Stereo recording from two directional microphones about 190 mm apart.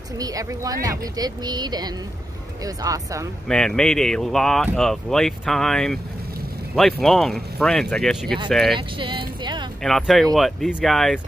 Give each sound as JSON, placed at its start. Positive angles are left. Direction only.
{"t": 0.2, "sound": "speech", "side_deg": -20}
{"t": 3.4, "sound": "speech", "side_deg": 5}
{"t": 8.7, "sound": "vehicle", "side_deg": -25}
{"t": 9.8, "sound": "speech", "side_deg": 0}